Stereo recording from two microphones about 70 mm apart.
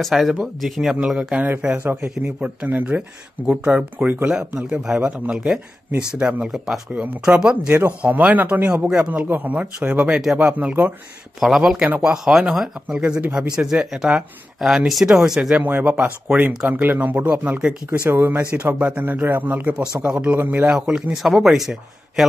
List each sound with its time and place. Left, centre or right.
0.0 s speech: centre
1.8 s speech: right; by 6.8 s centre
6.9 s speech: centre
11.3 s speech: centre
15.6 s speech: right
18.1 s speech: right
19.8 s speech: centre
20.3 s speech: right
20.7 s speech: centre